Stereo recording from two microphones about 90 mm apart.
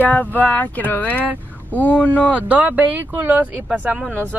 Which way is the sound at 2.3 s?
15° right (ahead or behind).